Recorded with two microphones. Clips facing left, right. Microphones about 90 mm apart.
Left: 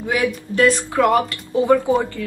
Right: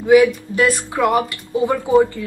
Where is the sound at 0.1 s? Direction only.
15° right (ahead or behind).